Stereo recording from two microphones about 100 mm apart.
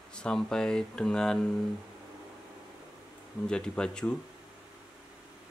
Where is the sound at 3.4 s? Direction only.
10° left (ahead or behind).